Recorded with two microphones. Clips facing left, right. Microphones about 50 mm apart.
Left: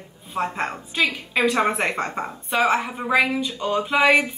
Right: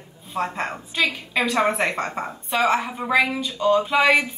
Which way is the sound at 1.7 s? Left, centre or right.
Centre.